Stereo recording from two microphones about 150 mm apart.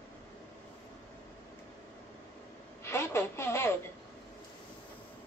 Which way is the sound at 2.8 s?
15° left (ahead or behind).